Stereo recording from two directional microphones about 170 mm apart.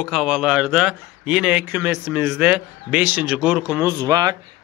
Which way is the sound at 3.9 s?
25° right (ahead or behind).